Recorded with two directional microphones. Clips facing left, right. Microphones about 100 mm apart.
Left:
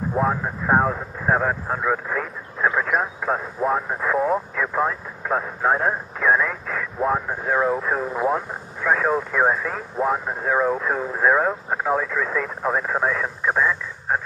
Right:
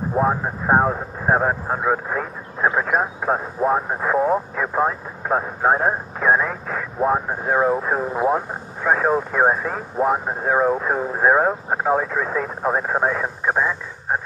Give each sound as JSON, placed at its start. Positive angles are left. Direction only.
{"t": 0.2, "sound": "speech", "side_deg": -25}